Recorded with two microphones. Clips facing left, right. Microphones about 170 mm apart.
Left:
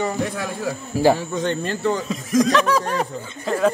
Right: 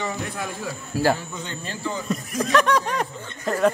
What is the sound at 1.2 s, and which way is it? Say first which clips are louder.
Speech: left 11 dB; 70° left (ahead or behind).